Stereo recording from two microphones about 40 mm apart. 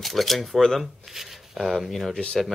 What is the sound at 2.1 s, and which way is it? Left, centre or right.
Speech, left.